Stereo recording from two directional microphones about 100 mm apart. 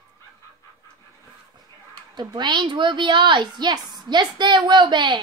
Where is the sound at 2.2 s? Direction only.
50° right (ahead or behind).